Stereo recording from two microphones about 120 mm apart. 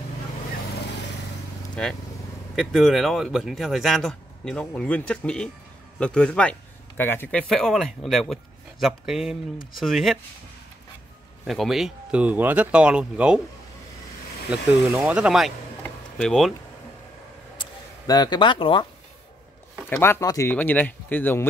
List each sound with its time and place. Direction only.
2.5 s speech: centre (ahead or behind)
11.4 s speech: centre (ahead or behind)
14.5 s speech: 10° right (ahead or behind)
15.8 s a sound: 5° left (ahead or behind)
17.6 s vehicle: 35° left (ahead or behind)
19.9 s speech: 20° left (ahead or behind)